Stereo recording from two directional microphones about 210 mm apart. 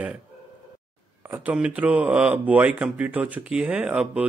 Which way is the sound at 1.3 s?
5° right (ahead or behind).